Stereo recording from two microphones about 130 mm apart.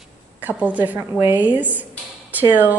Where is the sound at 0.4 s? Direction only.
10° right (ahead or behind).